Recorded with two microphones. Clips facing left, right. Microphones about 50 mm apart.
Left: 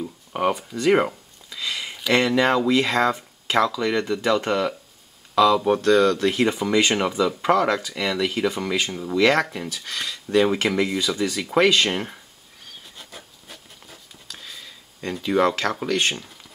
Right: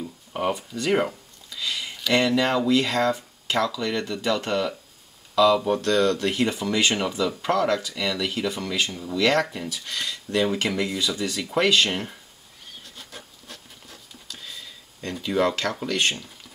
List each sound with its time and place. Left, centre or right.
0.5 s speech: left
12.9 s rub: centre
15.2 s speech: centre
15.9 s speech: centre